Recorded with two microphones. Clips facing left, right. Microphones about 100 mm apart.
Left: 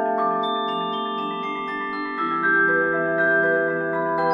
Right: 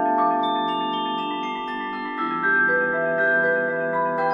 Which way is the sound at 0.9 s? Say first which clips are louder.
Right 1 dB; 25° left (ahead or behind).